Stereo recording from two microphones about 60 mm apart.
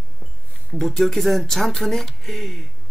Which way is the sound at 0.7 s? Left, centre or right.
Centre.